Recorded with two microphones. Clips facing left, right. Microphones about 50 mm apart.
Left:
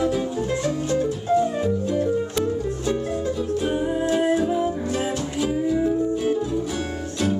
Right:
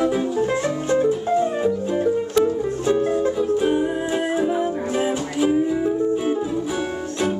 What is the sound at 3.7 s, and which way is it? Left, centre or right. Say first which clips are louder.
Music: right 1 dB; centre.